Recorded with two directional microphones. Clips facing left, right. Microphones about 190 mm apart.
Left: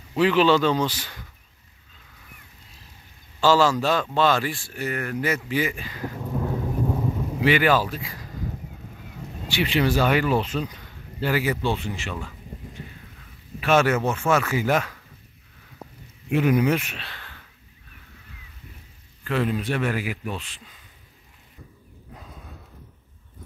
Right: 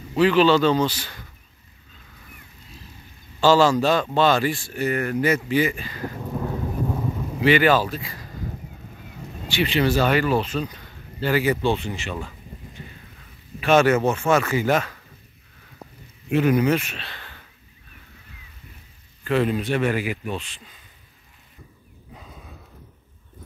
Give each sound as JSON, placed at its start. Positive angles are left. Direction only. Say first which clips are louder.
{"t": 0.2, "sound": "speech", "louder": "right 2 dB", "side_deg": 15}
{"t": 3.3, "sound": "a man's voice", "louder": "right 2 dB", "side_deg": 5}
{"t": 6.1, "sound": "thunder", "louder": "left 1 dB", "side_deg": 0}
{"t": 7.3, "sound": "speech", "louder": "right 3 dB", "side_deg": 10}
{"t": 9.5, "sound": "speech", "louder": "right 1 dB", "side_deg": 10}
{"t": 10.9, "sound": "a sound", "louder": "right 2 dB", "side_deg": 10}
{"t": 11.6, "sound": "speech", "louder": "right 3 dB", "side_deg": 5}
{"t": 13.6, "sound": "speech", "louder": "right 3 dB", "side_deg": 5}
{"t": 16.3, "sound": "speech", "louder": "right 1 dB", "side_deg": 15}
{"t": 19.2, "sound": "speech", "louder": "right 3 dB", "side_deg": 0}
{"t": 22.1, "sound": "horse", "louder": "even", "side_deg": 0}